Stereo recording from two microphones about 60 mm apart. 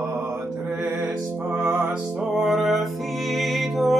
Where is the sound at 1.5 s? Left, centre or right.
Right.